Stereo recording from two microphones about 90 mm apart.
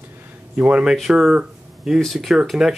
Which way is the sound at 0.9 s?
Centre (ahead or behind).